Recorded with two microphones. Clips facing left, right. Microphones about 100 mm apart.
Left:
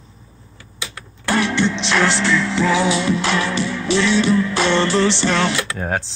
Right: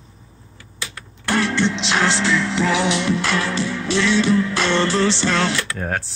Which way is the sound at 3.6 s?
65° left (ahead or behind).